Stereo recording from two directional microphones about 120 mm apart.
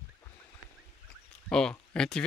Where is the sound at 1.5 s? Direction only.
5° left (ahead or behind).